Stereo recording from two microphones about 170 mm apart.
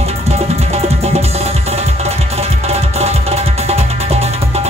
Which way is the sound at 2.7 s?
40° right (ahead or behind).